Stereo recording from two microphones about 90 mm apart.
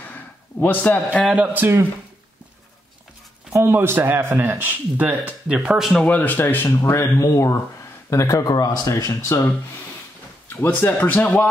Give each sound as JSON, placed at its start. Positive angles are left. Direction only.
{"t": 0.0, "sound": "a sound", "side_deg": 20}
{"t": 1.3, "sound": "speech", "side_deg": -15}
{"t": 3.5, "sound": "speech", "side_deg": -25}
{"t": 5.9, "sound": "speech", "side_deg": 15}
{"t": 10.5, "sound": "speech", "side_deg": 25}